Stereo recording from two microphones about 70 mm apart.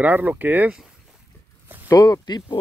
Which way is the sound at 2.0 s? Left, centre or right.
Left.